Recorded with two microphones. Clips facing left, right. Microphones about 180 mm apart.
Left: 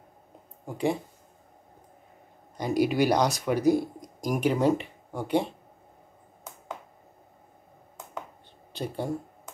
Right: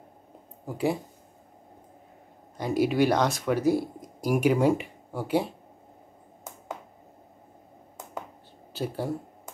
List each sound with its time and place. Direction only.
0.7 s speech: 5° right (ahead or behind)
2.5 s speech: 5° right (ahead or behind)
8.7 s speech: 5° right (ahead or behind)